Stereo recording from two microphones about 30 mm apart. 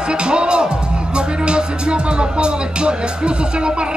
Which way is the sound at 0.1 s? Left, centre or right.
Right.